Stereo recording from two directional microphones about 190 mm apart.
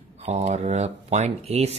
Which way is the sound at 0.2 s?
35° right (ahead or behind).